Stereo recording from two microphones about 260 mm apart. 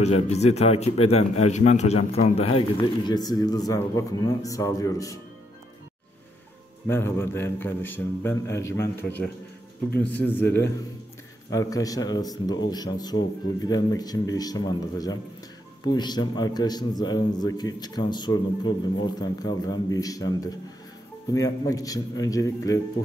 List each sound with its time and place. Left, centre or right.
0.0 s a man's voice: left
6.9 s a man's voice: centre